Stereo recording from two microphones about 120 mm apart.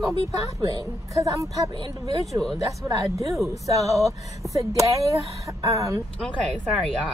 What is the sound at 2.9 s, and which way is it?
Speech, 25° right (ahead or behind).